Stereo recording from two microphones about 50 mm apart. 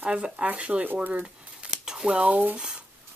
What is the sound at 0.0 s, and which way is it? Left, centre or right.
Speech, right.